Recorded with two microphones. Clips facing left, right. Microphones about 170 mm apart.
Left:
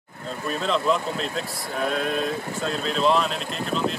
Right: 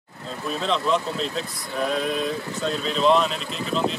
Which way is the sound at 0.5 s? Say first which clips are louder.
Even; centre (ahead or behind).